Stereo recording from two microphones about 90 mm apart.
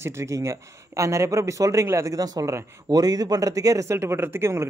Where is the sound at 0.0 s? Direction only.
30° right (ahead or behind).